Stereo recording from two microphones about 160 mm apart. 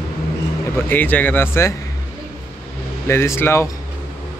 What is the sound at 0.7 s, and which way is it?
Speech, 10° left (ahead or behind).